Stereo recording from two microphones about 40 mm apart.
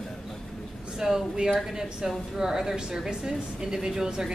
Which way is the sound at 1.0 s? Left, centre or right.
Centre.